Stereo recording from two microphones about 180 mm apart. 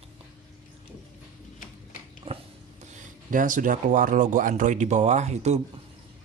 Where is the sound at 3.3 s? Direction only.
45° right (ahead or behind).